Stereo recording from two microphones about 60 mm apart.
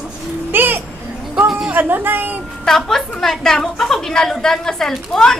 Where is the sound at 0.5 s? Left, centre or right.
Right.